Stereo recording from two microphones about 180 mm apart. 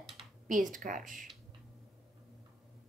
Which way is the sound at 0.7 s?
45° right (ahead or behind).